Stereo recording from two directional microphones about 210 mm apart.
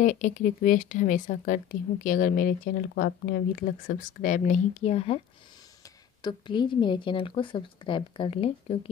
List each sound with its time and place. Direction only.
0.0 s speech: 35° left (ahead or behind)
6.2 s speech: 20° left (ahead or behind)